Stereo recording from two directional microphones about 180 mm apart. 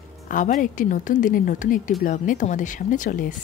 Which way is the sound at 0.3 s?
45° left (ahead or behind).